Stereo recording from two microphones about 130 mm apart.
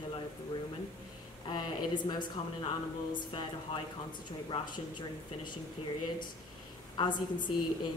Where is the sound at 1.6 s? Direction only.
35° left (ahead or behind).